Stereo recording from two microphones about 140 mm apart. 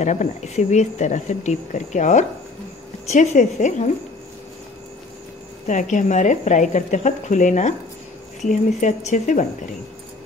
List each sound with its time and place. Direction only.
0.0 s speech: 55° left (ahead or behind)
5.7 s speech: 65° left (ahead or behind)